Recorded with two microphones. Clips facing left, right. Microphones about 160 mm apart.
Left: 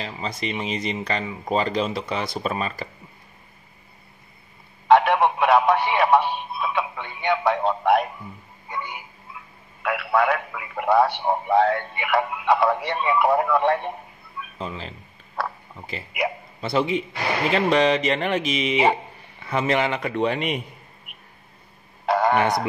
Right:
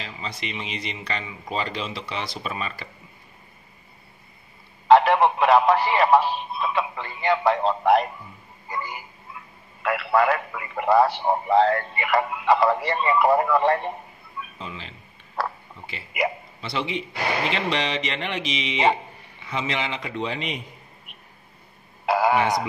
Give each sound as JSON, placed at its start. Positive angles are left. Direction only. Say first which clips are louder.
{"t": 0.0, "sound": "speech", "louder": "left 5 dB", "side_deg": 40}
{"t": 4.8, "sound": "a sound", "louder": "right 1 dB", "side_deg": 0}
{"t": 9.8, "sound": "speech", "louder": "right 1 dB", "side_deg": 0}
{"t": 14.6, "sound": "speech", "louder": "left 9 dB", "side_deg": 40}
{"t": 16.6, "sound": "a man's voice", "louder": "left 6 dB", "side_deg": 45}
{"t": 22.0, "sound": "speech", "louder": "even", "side_deg": -5}